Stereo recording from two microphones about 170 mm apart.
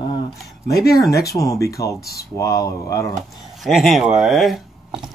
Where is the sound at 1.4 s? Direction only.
20° left (ahead or behind).